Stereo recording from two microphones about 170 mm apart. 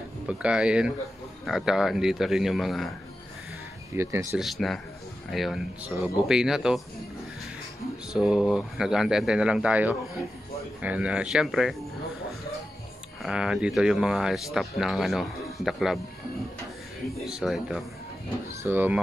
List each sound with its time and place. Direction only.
0.3 s speech: 5° right (ahead or behind)
3.9 s speech: 15° right (ahead or behind)
4.4 s speech: centre (ahead or behind)
8.1 s speech: 5° right (ahead or behind)
13.2 s speech: 5° right (ahead or behind)
17.2 s speech: centre (ahead or behind)